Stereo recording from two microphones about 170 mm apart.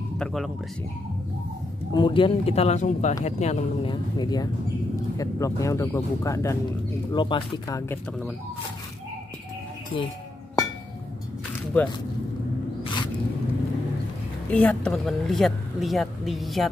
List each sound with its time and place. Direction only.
0.2 s speech: centre (ahead or behind)
1.9 s speech: 25° left (ahead or behind)
7.1 s speech: 30° left (ahead or behind)
9.9 s speech: 30° left (ahead or behind)
11.7 s speech: 10° left (ahead or behind)
12.8 s a sound: 25° left (ahead or behind)
14.5 s speech: 5° left (ahead or behind)